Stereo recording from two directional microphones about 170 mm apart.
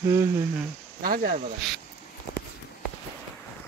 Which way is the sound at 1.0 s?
60° right (ahead or behind).